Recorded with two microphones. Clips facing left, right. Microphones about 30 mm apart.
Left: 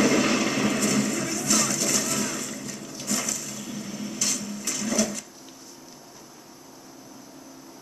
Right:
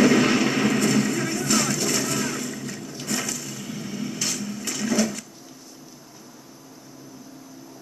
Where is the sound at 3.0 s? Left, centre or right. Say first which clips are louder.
Right 1 dB; right.